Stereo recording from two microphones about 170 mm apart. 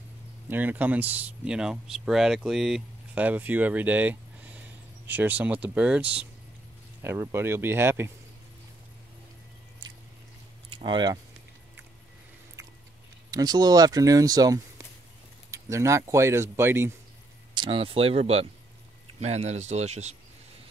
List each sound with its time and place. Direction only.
0.5 s speech: 10° right (ahead or behind)
10.7 s speech: 30° right (ahead or behind)
13.3 s speech: 25° right (ahead or behind)
17.6 s speech: 30° right (ahead or behind)